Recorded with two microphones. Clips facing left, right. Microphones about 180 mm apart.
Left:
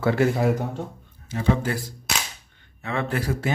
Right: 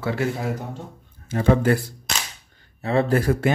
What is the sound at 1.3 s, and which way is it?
Speech, 55° right (ahead or behind).